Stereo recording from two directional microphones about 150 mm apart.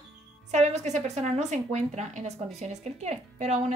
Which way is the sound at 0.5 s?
50° right (ahead or behind).